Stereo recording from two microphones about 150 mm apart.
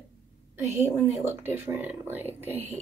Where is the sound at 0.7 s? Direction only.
15° right (ahead or behind).